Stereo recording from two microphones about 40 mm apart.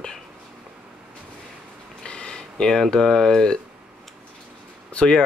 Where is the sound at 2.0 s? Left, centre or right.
Left.